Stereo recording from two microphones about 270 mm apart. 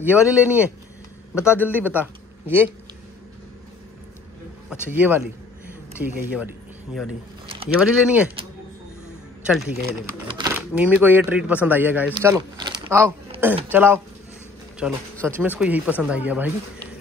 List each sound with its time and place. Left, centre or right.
0.0 s a man's voice: centre
4.9 s speech: centre
7.4 s a sound: right
7.7 s speech: centre
9.5 s speech: centre
10.2 s speech: centre